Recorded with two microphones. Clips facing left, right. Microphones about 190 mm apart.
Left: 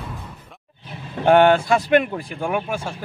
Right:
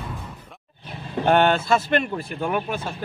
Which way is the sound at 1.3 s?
10° left (ahead or behind).